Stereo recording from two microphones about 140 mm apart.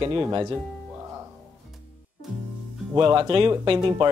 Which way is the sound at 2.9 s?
35° right (ahead or behind).